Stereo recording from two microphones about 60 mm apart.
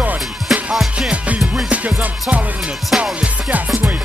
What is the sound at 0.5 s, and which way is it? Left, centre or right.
Music, centre.